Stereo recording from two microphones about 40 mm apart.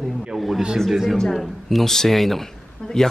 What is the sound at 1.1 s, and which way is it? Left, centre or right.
Speech, centre.